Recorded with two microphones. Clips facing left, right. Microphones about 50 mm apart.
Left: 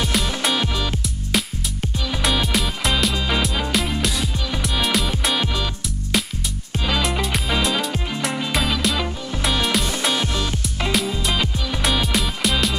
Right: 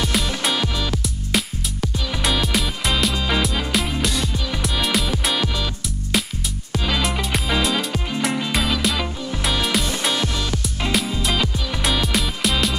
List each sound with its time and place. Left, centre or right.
0.0 s music: centre
6.9 s music: centre
10.9 s music: centre